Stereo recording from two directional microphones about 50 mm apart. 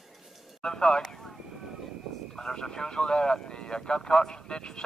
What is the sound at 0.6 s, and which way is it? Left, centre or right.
Speech, centre.